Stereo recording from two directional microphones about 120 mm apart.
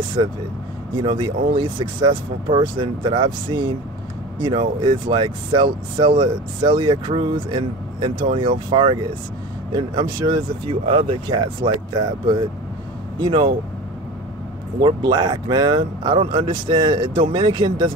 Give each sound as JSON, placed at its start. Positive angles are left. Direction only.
{"t": 0.2, "sound": "speech", "side_deg": -45}
{"t": 9.9, "sound": "speech", "side_deg": -45}
{"t": 14.8, "sound": "speech", "side_deg": -40}